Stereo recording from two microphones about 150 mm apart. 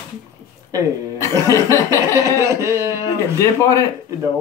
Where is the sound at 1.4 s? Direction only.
20° left (ahead or behind).